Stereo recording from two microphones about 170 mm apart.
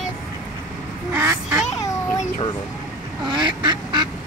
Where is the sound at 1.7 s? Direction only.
20° left (ahead or behind).